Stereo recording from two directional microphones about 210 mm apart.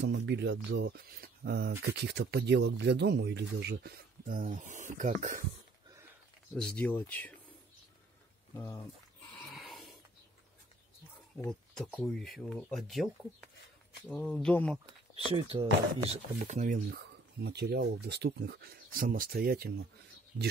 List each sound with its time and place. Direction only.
0.0 s speech: 55° right (ahead or behind); by 5.4 s 40° right (ahead or behind)
6.5 s speech: 5° left (ahead or behind)
9.4 s a sound: centre (ahead or behind)
11.4 s speech: 5° left (ahead or behind)
15.3 s speech: 25° right (ahead or behind); by 19.7 s 45° right (ahead or behind)